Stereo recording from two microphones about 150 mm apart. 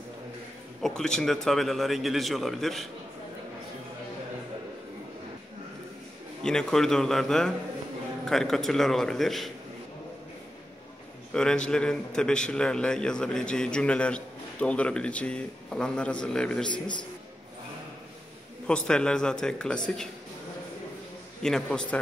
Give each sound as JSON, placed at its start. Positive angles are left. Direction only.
{"t": 0.8, "sound": "a man's voice", "side_deg": 5}
{"t": 6.4, "sound": "a man's voice", "side_deg": 5}
{"t": 11.3, "sound": "a man's voice", "side_deg": 5}
{"t": 16.7, "sound": "a man's voice", "side_deg": 30}
{"t": 18.9, "sound": "a man's voice", "side_deg": 5}
{"t": 21.4, "sound": "a man's voice", "side_deg": 5}